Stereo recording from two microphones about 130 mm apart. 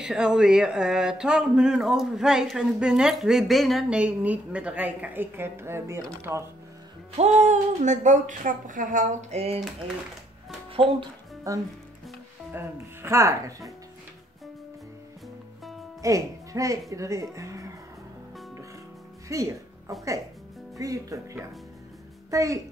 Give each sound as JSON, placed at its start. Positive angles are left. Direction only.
{"t": 0.0, "sound": "speech", "side_deg": -5}
{"t": 7.2, "sound": "speech", "side_deg": -60}
{"t": 10.7, "sound": "speech", "side_deg": -45}
{"t": 11.5, "sound": "speech", "side_deg": -25}
{"t": 16.0, "sound": "speech", "side_deg": -25}
{"t": 19.2, "sound": "speech", "side_deg": -25}
{"t": 20.7, "sound": "speech", "side_deg": -25}